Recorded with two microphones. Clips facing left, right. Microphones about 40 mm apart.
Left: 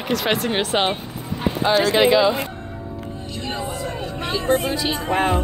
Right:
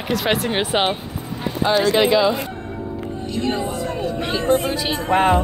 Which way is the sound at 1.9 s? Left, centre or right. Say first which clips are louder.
Left 2 dB; centre.